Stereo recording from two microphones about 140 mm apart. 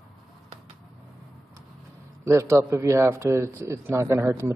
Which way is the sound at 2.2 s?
20° right (ahead or behind).